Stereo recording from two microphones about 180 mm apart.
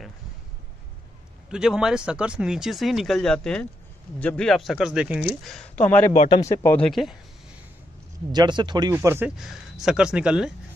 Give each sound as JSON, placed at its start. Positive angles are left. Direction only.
{"t": 1.5, "sound": "speech", "side_deg": -5}
{"t": 6.1, "sound": "speech", "side_deg": 35}
{"t": 6.5, "sound": "speech", "side_deg": 15}
{"t": 6.9, "sound": "speech", "side_deg": 0}
{"t": 8.3, "sound": "speech", "side_deg": -25}
{"t": 8.9, "sound": "speech", "side_deg": -10}
{"t": 9.4, "sound": "speech", "side_deg": 0}